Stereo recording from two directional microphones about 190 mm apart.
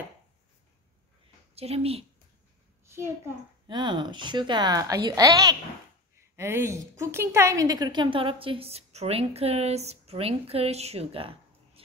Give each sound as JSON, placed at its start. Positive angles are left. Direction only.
{"t": 1.5, "sound": "speech", "side_deg": -30}
{"t": 2.9, "sound": "a child's voice", "side_deg": -15}
{"t": 3.6, "sound": "a woman's voice", "side_deg": -25}